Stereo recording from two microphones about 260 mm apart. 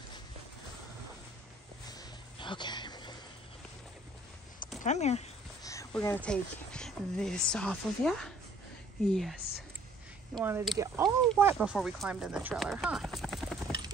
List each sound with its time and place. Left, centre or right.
1.9 s a sound: centre
4.8 s speech: left
5.6 s speech: centre